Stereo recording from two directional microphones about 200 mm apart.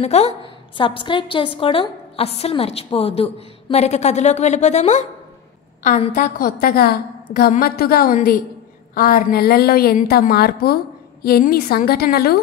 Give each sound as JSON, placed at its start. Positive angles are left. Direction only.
{"t": 0.0, "sound": "a woman's voice", "side_deg": 30}